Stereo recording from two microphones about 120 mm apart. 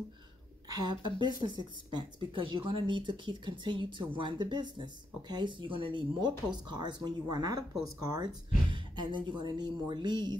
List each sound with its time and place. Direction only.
0.7 s speech: 35° right (ahead or behind)
8.7 s speech: 40° right (ahead or behind)